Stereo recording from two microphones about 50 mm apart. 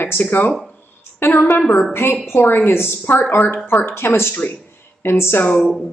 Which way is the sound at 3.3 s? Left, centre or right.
Left.